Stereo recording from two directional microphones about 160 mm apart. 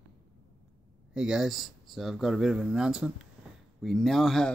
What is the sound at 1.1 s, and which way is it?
Speech, 5° right (ahead or behind).